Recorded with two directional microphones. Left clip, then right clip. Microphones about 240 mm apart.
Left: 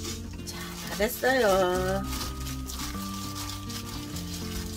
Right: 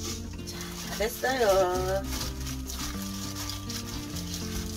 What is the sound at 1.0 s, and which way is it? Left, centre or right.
Music, left.